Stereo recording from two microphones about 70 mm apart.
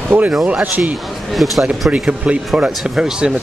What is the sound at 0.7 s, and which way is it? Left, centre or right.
Speech, right.